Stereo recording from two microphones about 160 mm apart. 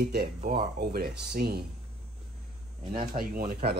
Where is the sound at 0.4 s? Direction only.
65° right (ahead or behind).